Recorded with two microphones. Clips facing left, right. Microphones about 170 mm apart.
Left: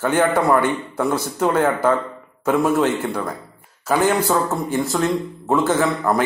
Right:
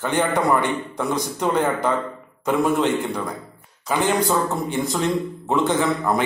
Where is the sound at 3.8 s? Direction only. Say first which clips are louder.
Left 3 dB; 5° left (ahead or behind).